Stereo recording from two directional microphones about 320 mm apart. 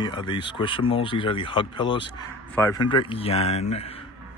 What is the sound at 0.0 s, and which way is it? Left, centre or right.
Speech, centre.